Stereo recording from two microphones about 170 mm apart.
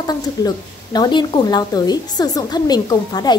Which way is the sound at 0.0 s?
20° left (ahead or behind).